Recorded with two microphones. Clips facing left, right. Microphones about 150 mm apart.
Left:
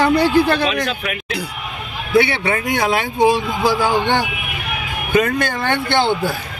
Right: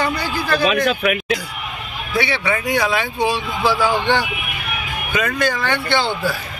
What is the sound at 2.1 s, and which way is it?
Speech, 55° left (ahead or behind).